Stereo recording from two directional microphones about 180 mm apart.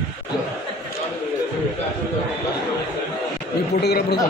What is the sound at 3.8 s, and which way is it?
Speech, 65° left (ahead or behind).